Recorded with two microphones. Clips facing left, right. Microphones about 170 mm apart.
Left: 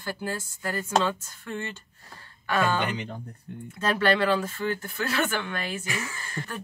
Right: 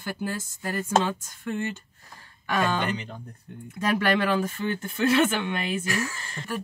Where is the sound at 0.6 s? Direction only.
20° right (ahead or behind).